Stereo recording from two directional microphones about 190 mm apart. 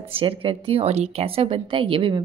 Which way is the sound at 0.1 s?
30° right (ahead or behind).